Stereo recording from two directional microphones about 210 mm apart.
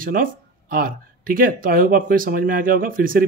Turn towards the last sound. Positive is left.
turn(degrees=-40)  # may be behind; listen again after turning